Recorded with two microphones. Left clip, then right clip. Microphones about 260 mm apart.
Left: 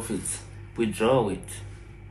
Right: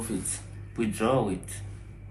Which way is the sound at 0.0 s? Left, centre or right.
Centre.